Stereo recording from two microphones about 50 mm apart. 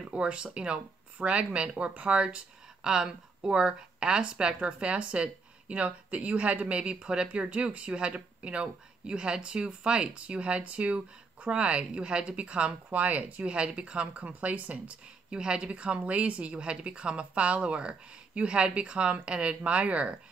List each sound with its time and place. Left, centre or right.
0.1 s speech: right